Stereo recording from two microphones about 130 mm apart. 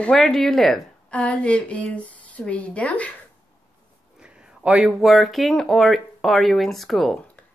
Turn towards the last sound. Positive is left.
turn(degrees=0)  # may be behind; listen again after turning